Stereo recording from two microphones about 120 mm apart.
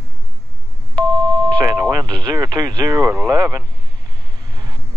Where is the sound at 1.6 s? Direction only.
30° right (ahead or behind).